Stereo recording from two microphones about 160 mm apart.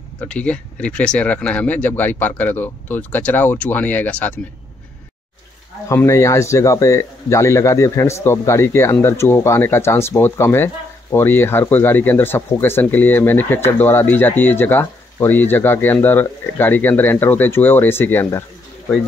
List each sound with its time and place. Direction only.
0.2 s speech: 5° left (ahead or behind)
5.9 s speech: 20° left (ahead or behind)